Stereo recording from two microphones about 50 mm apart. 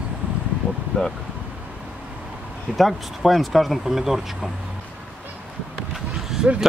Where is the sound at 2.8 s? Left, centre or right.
Centre.